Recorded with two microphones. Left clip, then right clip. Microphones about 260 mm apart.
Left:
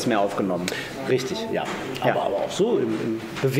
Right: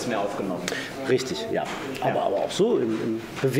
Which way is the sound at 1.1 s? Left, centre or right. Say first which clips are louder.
Even; right.